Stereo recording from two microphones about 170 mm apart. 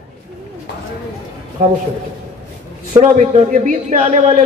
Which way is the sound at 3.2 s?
45° right (ahead or behind).